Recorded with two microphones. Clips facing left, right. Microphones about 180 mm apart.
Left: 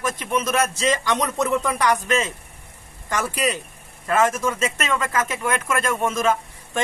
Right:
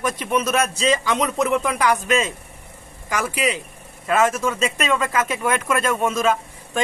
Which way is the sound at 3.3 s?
10° right (ahead or behind).